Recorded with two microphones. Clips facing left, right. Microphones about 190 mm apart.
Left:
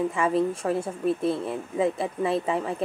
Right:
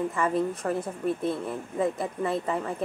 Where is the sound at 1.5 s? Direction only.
5° left (ahead or behind).